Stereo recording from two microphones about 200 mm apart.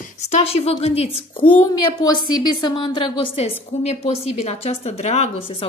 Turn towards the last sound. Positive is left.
turn(degrees=35)  # may be behind; listen again after turning